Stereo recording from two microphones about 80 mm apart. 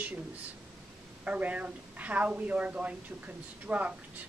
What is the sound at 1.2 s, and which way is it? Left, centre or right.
Speech, centre.